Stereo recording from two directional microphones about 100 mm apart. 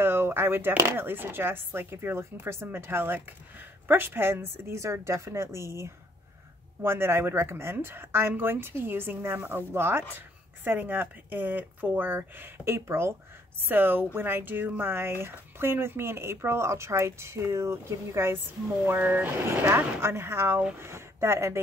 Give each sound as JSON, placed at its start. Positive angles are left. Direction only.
{"t": 0.0, "sound": "speech", "side_deg": -25}